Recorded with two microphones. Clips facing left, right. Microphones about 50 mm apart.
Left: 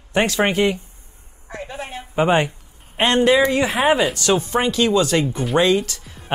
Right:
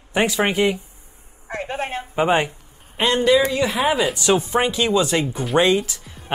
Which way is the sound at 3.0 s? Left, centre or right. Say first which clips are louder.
Left 1 dB; left.